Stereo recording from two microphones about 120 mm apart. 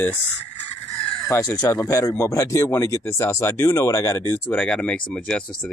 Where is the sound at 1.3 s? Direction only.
25° left (ahead or behind).